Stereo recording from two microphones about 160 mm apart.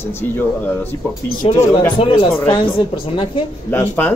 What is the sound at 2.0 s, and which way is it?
A woman's voice, 35° left (ahead or behind).